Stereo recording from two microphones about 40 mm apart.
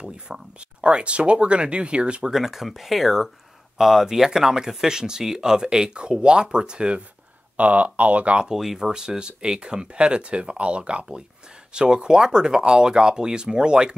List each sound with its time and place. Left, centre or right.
0.0 s speech: right
2.2 s speech: centre; by 7.0 s right
7.5 s speech: right
8.7 s speech: centre